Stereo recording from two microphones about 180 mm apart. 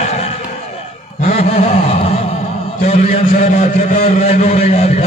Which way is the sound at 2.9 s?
35° left (ahead or behind).